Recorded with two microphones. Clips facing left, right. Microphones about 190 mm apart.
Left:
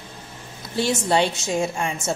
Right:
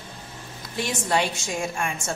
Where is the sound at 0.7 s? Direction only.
30° left (ahead or behind).